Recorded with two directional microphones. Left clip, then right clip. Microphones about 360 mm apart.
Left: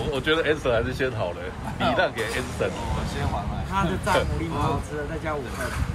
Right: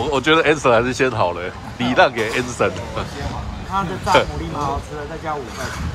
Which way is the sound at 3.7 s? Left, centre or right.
Centre.